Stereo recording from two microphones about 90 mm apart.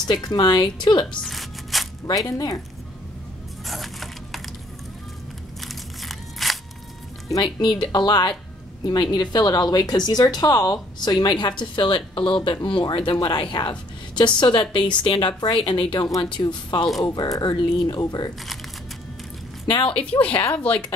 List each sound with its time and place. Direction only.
0.0 s speech: 50° left (ahead or behind)
1.0 s a sound: centre (ahead or behind)
2.0 s speech: 40° left (ahead or behind)
3.6 s a sound: centre (ahead or behind)
5.6 s crumpling: centre (ahead or behind)
7.3 s speech: 50° left (ahead or behind)
19.7 s speech: 60° left (ahead or behind)
20.0 s speech: 15° left (ahead or behind)